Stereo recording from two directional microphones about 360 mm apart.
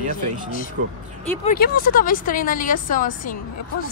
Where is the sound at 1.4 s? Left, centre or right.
Left.